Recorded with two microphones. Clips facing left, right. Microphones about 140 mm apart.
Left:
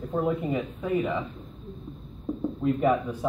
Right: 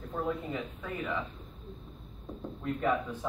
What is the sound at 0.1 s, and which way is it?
Speech, 15° left (ahead or behind).